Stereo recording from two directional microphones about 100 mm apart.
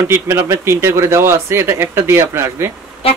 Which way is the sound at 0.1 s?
25° right (ahead or behind).